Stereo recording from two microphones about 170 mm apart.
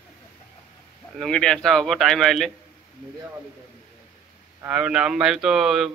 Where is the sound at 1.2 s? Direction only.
5° left (ahead or behind).